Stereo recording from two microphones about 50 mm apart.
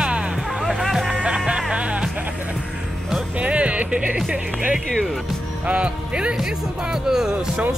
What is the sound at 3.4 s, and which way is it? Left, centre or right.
Music, right.